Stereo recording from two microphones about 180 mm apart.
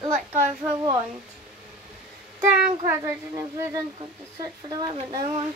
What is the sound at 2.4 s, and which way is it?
Child singing, 15° right (ahead or behind).